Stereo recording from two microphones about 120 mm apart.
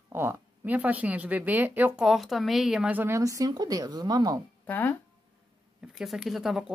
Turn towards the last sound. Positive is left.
turn(degrees=0)  # may be behind; listen again after turning